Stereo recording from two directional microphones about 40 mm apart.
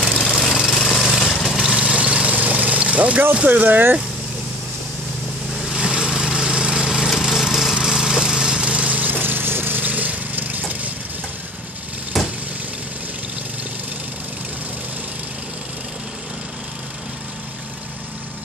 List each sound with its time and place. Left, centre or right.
0.6 s lawn mower: centre
1.1 s vehicle: centre
1.5 s vehicle: centre
1.8 s vehicle: right
3.4 s speech: right
5.7 s lawn mower: centre; by 9.1 s right
9.2 s lawn mower: right
12.1 s a sound: centre